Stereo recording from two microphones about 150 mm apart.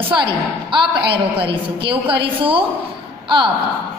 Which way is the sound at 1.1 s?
35° right (ahead or behind).